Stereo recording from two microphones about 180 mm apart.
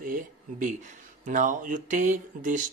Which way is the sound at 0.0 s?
50° right (ahead or behind).